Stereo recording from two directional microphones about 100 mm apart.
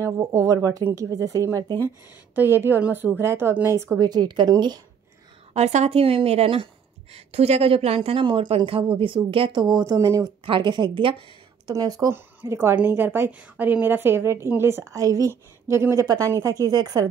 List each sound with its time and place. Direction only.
0.0 s a woman's voice: 30° right (ahead or behind)
4.0 s a woman's voice: 45° right (ahead or behind)
5.5 s speech: 90° right; by 6.7 s 70° right (ahead or behind)
7.3 s speech: 90° right; by 9.8 s 55° right (ahead or behind)
9.8 s speech: 35° right (ahead or behind)
10.4 s a woman's voice: 55° right (ahead or behind)
11.6 s speech: 40° right (ahead or behind)
12.1 s a woman's voice: 25° right (ahead or behind); by 17.1 s 40° right (ahead or behind)